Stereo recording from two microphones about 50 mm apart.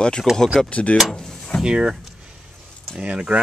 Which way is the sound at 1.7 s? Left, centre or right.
Centre.